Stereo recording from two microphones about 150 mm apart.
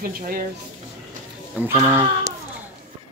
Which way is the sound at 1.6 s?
15° right (ahead or behind).